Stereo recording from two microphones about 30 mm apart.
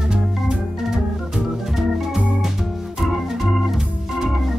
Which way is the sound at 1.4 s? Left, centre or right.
Centre.